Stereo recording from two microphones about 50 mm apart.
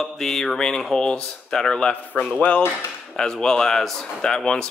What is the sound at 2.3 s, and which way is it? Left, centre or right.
Speech, left.